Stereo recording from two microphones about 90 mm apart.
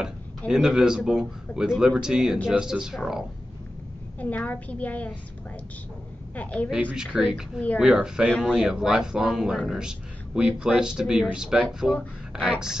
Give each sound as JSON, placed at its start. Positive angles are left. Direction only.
{"t": 0.5, "sound": "speech", "side_deg": -5}
{"t": 4.2, "sound": "a woman's voice", "side_deg": 15}
{"t": 6.3, "sound": "a woman's voice", "side_deg": 15}
{"t": 6.8, "sound": "speech", "side_deg": -15}